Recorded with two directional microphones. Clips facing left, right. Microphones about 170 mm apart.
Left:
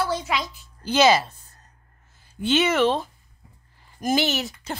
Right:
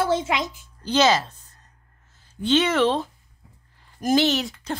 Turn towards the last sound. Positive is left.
turn(degrees=5)  # may be behind; listen again after turning